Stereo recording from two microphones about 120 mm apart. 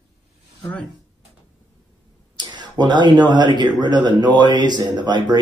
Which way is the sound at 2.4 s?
40° right (ahead or behind).